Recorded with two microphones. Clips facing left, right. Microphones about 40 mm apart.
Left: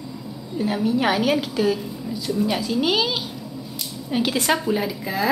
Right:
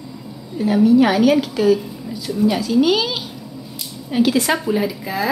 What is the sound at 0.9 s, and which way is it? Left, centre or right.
Speech, centre.